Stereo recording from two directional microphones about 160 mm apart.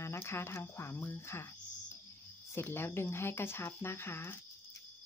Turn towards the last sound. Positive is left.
turn(degrees=15)  # may be behind; listen again after turning